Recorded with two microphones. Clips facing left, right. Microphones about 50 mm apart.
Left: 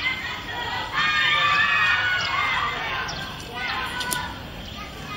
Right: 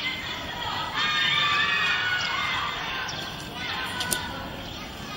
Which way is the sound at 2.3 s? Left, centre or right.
Left.